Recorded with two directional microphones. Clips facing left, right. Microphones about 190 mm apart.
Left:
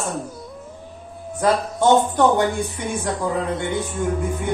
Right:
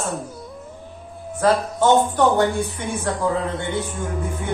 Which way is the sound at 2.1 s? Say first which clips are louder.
Even; 15° left (ahead or behind).